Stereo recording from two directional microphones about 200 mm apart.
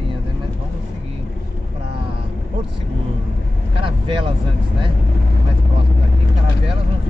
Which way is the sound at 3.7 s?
25° right (ahead or behind).